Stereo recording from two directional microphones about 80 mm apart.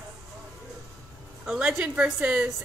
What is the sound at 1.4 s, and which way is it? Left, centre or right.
A woman's voice, centre.